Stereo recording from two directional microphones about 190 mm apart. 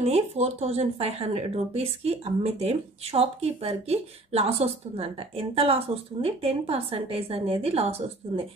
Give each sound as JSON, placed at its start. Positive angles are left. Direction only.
{"t": 0.0, "sound": "speech", "side_deg": -35}